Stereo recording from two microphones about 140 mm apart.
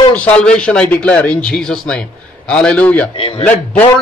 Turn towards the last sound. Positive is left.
turn(degrees=10)  # may be behind; listen again after turning